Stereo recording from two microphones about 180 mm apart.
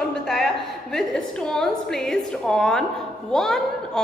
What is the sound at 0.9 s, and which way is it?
A woman's voice, 5° left (ahead or behind).